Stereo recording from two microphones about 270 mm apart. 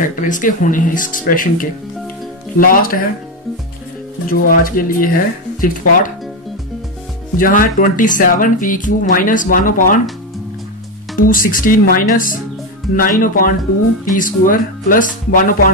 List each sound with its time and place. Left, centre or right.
0.0 s speech: left
4.3 s speech: left
7.3 s speech: left
11.1 s speech: left